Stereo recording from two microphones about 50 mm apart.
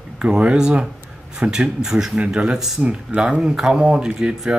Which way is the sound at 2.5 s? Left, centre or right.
Centre.